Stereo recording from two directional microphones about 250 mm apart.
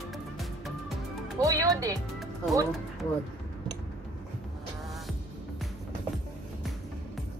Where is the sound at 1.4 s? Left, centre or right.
Centre.